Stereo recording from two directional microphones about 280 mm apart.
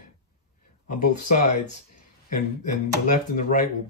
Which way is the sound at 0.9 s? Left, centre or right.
Left.